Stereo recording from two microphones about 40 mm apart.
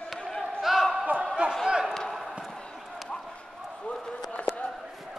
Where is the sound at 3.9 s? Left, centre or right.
Left.